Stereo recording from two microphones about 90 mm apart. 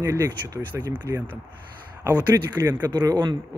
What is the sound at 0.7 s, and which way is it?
Speech, 20° right (ahead or behind).